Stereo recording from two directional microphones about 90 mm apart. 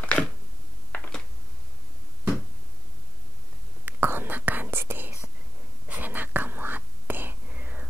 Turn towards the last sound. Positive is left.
turn(degrees=-15)  # may be behind; listen again after turning